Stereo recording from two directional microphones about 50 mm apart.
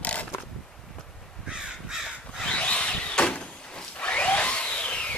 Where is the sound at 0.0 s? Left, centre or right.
Left.